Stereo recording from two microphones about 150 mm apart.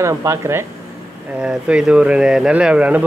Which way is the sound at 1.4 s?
5° right (ahead or behind).